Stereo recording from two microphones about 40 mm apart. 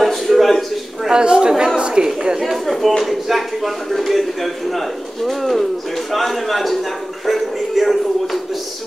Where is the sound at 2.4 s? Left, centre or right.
Centre.